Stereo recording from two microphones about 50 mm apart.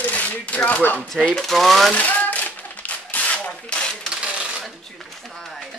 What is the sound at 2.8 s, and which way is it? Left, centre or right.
Rub, left.